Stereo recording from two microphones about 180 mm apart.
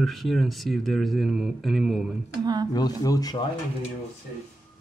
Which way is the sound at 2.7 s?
20° left (ahead or behind).